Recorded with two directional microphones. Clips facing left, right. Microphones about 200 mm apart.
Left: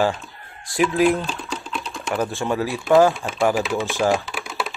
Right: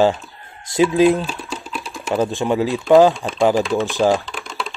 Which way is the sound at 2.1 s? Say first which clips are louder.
Right 4 dB; 20° right (ahead or behind).